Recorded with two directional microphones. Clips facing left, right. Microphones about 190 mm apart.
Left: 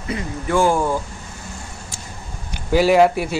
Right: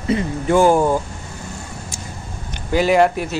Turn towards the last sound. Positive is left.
turn(degrees=10)  # may be behind; listen again after turning